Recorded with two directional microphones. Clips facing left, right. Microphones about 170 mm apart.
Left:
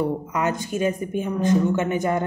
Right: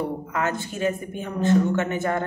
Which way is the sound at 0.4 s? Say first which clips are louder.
Left 2 dB; 15° left (ahead or behind).